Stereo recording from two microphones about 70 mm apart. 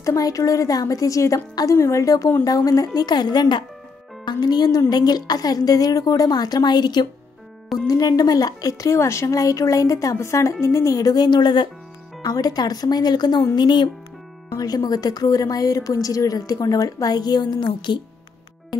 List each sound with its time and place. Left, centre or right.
0.0 s a woman's voice: left
7.8 s a woman's voice: left
12.2 s speech: left
14.6 s a woman's voice: left